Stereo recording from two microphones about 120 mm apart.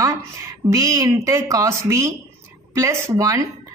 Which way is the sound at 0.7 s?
25° right (ahead or behind).